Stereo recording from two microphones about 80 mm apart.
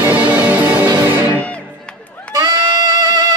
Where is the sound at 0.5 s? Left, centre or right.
Right.